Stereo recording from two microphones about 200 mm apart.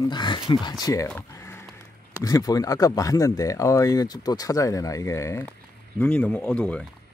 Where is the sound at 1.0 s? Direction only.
10° left (ahead or behind).